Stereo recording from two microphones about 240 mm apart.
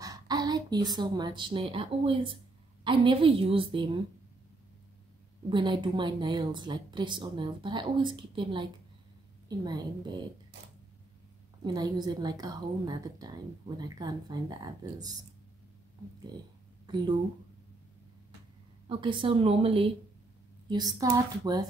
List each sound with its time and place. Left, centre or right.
0.0 s a woman's voice: centre
5.5 s a woman's voice: centre
11.6 s a woman's voice: centre
16.8 s a sound: centre
18.9 s a woman's voice: right